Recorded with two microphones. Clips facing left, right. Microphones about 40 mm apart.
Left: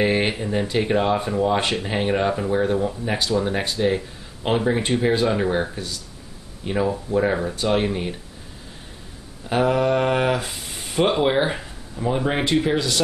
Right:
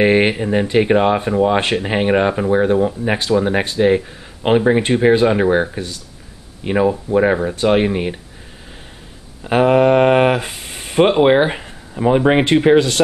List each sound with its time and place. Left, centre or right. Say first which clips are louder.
0.0 s speech: right 7 dB; right
9.4 s speech: right 7 dB; right